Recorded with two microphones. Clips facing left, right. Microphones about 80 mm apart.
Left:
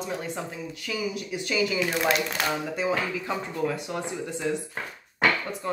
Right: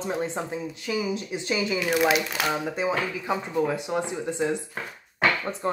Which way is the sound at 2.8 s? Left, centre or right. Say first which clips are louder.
Even; right.